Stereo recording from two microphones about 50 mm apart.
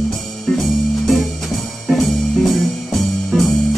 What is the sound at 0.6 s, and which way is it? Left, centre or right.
Music, centre.